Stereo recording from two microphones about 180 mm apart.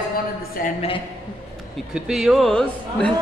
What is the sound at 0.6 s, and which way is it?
Speech, 50° left (ahead or behind).